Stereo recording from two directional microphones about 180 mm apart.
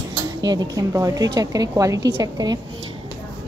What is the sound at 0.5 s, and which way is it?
A woman's voice, 20° right (ahead or behind).